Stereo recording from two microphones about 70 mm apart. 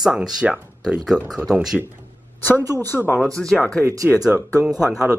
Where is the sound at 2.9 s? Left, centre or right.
Left.